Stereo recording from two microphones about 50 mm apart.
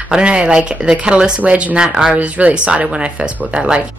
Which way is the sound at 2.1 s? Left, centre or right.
Right.